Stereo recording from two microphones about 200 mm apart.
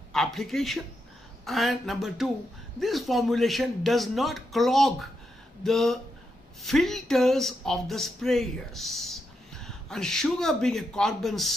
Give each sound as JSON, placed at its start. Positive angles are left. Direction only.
{"t": 0.1, "sound": "speech", "side_deg": 0}